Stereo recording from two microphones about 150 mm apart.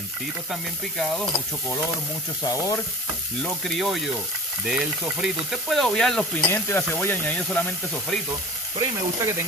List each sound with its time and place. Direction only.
0.5 s frying: centre (ahead or behind)
2.4 s frying: 20° left (ahead or behind)
3.4 s frying: centre (ahead or behind)
8.7 s speech: 20° right (ahead or behind)